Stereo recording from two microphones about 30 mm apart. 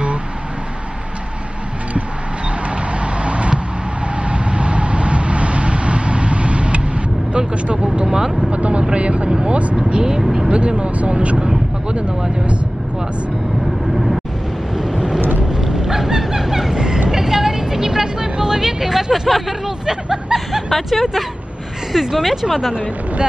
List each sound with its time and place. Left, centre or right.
2.7 s vehicle: right
8.1 s vehicle: right
8.4 s vehicle: right
9.8 s vehicle: right
10.5 s a sound: right
13.9 s vehicle: centre
15.4 s a sound: right
17.1 s vehicle: centre
19.2 s hubbub: centre
19.6 s hubbub: right
20.7 s music: centre
22.1 s speech: centre